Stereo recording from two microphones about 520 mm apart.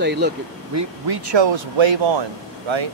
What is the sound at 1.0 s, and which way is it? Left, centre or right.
Speech, right.